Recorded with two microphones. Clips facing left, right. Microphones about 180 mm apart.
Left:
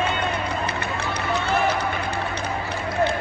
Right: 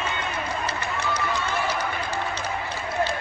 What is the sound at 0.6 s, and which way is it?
Run, 60° left (ahead or behind).